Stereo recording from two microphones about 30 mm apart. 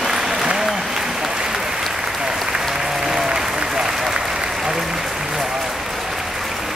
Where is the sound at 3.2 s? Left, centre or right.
Right.